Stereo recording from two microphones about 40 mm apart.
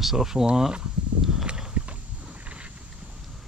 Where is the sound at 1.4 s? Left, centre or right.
Right.